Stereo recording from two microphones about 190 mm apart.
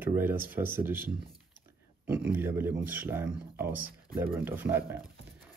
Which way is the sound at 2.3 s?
10° right (ahead or behind).